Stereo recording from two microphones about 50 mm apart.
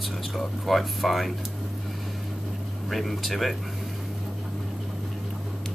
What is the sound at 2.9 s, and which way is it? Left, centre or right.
Speech, centre.